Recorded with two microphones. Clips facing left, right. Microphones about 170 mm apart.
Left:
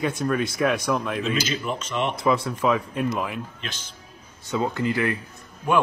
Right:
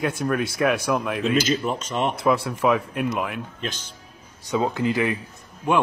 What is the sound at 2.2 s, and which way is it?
Speech, 5° right (ahead or behind).